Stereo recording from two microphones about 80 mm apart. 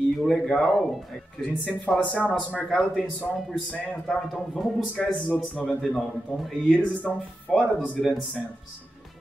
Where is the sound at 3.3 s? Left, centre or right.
Centre.